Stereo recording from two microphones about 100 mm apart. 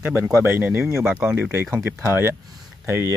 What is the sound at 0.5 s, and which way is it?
Speech, 15° right (ahead or behind).